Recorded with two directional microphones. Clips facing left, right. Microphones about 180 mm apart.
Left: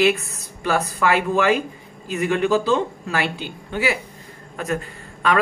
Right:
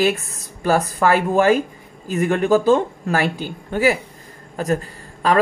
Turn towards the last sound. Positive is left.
turn(degrees=-35)  # may be behind; listen again after turning